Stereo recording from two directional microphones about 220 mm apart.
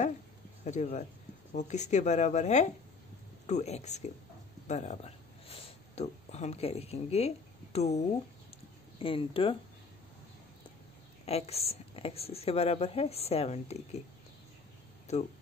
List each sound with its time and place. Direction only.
0.7 s speech: 30° left (ahead or behind)
9.0 s a woman's voice: 25° left (ahead or behind)
11.2 s a woman's voice: 30° left (ahead or behind)
15.1 s speech: 30° left (ahead or behind)